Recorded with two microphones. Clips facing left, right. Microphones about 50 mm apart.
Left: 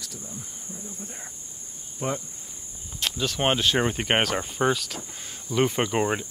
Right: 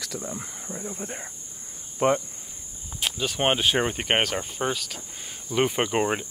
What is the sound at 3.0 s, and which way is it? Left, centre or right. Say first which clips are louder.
Speech: even; centre.